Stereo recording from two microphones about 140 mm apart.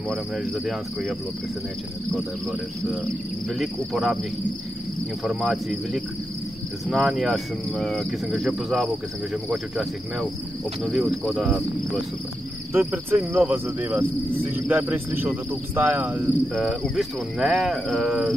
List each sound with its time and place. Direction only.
0.1 s cricket: centre (ahead or behind)
3.5 s cricket: centre (ahead or behind)
5.2 s cricket: 5° right (ahead or behind)
12.7 s cricket: 15° right (ahead or behind)
16.5 s cricket: centre (ahead or behind)